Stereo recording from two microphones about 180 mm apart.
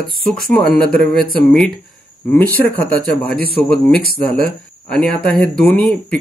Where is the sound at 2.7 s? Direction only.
10° left (ahead or behind).